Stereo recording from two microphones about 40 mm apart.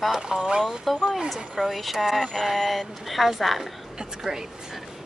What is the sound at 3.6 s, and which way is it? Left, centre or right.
Speech, centre.